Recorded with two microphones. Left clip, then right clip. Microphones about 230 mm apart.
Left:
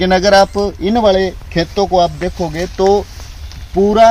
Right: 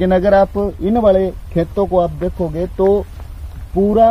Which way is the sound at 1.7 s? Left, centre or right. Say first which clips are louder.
Left 4 dB; centre.